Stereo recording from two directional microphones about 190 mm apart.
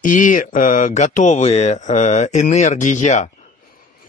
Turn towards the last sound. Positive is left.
turn(degrees=40)  # may be behind; listen again after turning